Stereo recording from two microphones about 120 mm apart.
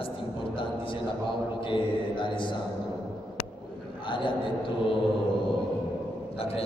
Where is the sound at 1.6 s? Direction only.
45° left (ahead or behind).